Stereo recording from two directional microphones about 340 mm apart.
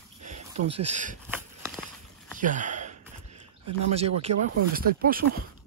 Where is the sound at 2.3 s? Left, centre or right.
Right.